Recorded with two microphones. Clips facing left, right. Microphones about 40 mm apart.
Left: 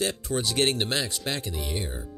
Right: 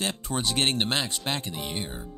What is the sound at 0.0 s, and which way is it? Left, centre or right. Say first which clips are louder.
Speech: left 1 dB; centre.